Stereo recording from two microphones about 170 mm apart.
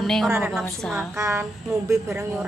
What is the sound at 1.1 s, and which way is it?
A woman's voice, 15° right (ahead or behind).